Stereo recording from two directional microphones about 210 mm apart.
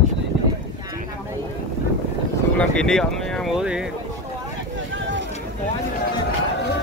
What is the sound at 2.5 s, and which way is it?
Speech, 5° left (ahead or behind).